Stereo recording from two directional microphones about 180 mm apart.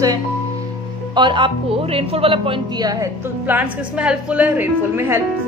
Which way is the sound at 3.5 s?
10° right (ahead or behind).